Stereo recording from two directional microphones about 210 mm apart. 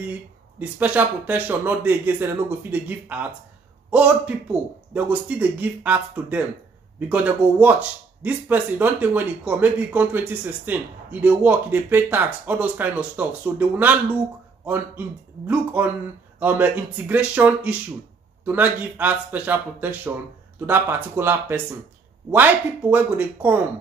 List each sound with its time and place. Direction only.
0.6 s speech: 5° right (ahead or behind)